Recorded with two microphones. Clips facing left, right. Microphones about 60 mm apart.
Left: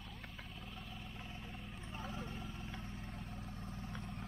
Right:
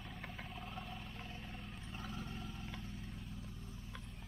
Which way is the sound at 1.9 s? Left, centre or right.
Centre.